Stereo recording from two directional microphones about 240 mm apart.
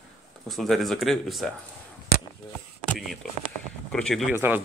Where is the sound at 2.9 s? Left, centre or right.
Centre.